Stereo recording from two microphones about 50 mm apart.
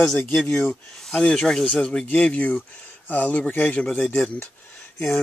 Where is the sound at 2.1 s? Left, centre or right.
Left.